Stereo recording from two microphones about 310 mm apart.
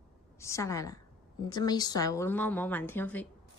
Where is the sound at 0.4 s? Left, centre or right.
Centre.